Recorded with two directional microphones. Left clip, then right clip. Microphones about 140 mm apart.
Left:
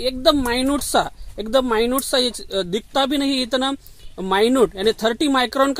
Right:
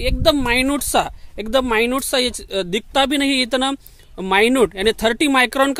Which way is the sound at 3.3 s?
20° right (ahead or behind).